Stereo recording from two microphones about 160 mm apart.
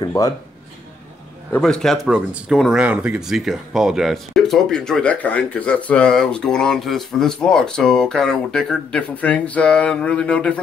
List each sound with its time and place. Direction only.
0.0 s speech: 20° left (ahead or behind)
1.5 s speech: 5° left (ahead or behind)